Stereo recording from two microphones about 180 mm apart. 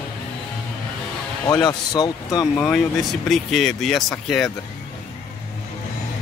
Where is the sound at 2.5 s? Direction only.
Centre (ahead or behind).